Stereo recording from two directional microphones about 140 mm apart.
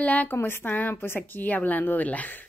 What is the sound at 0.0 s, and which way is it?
A woman's voice, 10° left (ahead or behind).